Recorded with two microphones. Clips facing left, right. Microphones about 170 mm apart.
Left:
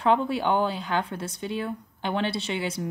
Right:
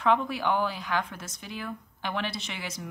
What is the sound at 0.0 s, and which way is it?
A woman's voice, 30° left (ahead or behind).